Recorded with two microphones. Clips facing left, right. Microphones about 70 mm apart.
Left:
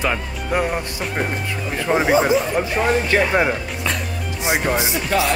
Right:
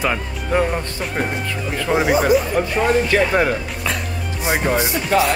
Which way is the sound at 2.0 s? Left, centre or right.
Left.